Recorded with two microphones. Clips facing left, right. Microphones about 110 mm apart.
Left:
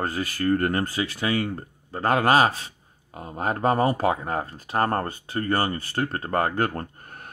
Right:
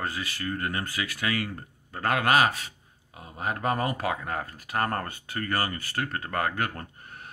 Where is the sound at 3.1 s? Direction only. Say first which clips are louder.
Left 5 dB; 45° left (ahead or behind).